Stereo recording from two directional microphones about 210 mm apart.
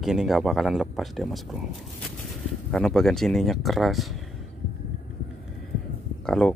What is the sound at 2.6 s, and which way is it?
Speech, centre (ahead or behind).